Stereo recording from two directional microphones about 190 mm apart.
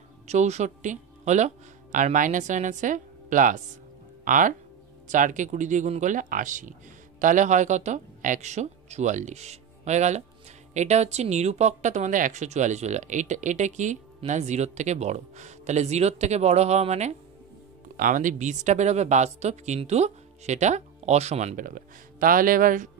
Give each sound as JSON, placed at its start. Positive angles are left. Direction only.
{"t": 0.3, "sound": "speech", "side_deg": -35}